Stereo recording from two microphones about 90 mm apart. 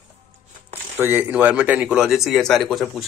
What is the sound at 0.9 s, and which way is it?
Speech, 20° right (ahead or behind).